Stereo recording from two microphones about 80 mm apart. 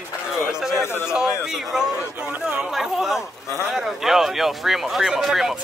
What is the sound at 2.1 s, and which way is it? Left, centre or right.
Speech, centre.